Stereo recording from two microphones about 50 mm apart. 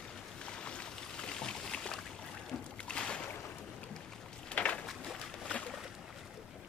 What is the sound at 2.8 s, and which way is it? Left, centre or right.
Boat, centre.